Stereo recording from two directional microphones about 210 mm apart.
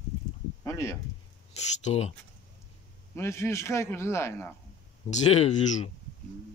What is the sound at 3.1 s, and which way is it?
Speech, 15° left (ahead or behind).